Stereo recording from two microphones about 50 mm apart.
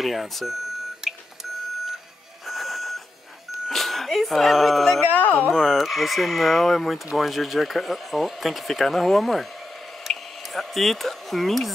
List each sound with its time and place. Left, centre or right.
0.0 s speech: centre
1.0 s beep: centre
2.4 s printer: centre
3.6 s speech: centre